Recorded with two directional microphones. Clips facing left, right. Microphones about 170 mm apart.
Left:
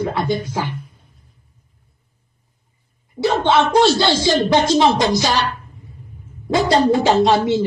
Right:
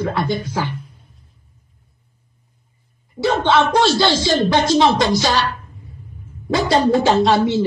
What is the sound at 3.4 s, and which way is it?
Speech, 20° left (ahead or behind).